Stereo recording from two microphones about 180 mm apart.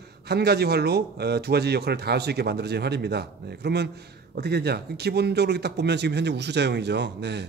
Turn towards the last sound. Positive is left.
turn(degrees=-70)  # may be behind; listen again after turning